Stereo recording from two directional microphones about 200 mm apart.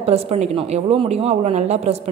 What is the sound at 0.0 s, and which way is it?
A woman's voice, 30° right (ahead or behind).